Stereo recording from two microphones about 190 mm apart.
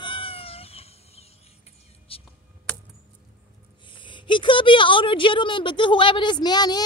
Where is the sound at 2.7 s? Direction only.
5° left (ahead or behind).